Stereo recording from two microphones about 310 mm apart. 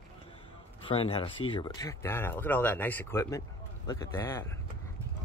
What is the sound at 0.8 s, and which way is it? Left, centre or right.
Speech, centre.